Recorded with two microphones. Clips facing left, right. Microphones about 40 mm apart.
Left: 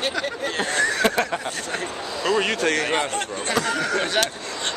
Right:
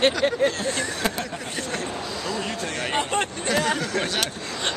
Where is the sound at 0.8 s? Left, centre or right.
Left.